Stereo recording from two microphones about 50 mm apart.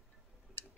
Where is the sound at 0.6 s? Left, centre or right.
Left.